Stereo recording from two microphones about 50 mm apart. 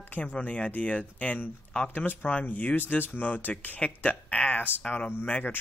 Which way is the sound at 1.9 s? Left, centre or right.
Left.